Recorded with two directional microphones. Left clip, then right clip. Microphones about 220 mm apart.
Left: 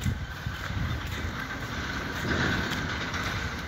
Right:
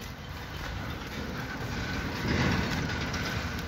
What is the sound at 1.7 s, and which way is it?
Vehicle, 45° right (ahead or behind).